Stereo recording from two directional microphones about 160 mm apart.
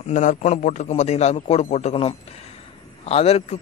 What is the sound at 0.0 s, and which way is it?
A man's voice, 50° left (ahead or behind).